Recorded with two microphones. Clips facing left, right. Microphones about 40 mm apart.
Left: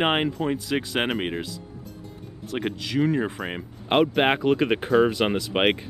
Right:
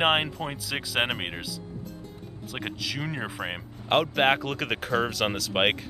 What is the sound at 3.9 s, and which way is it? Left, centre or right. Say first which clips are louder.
Speech: left 2 dB; centre.